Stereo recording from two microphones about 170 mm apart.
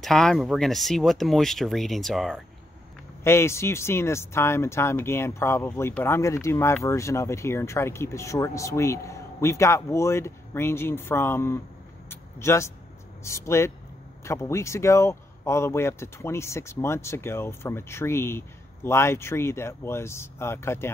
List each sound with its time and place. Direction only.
0.0 s speech: 5° left (ahead or behind)
3.3 s speech: 15° left (ahead or behind)